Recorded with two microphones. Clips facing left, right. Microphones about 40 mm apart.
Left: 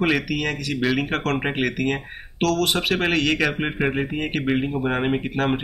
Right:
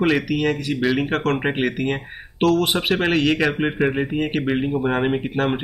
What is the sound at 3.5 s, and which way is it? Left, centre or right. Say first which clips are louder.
Speech: right 3 dB; centre.